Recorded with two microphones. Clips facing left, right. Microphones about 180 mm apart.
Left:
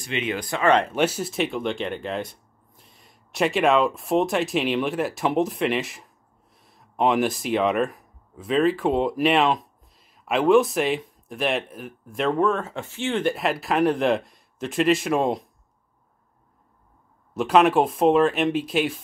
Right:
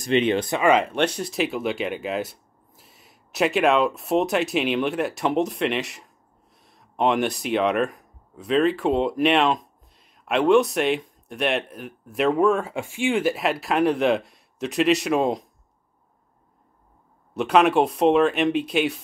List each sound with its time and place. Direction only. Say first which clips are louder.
0.0 s speech: right 7 dB; 35° right (ahead or behind)
0.7 s speech: even; centre (ahead or behind)
17.3 s speech: even; centre (ahead or behind)